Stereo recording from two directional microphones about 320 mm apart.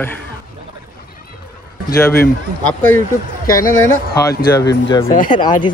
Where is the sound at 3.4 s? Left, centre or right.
Left.